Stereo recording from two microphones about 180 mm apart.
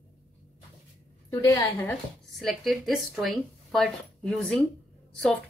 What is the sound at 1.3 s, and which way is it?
Speech, 20° left (ahead or behind).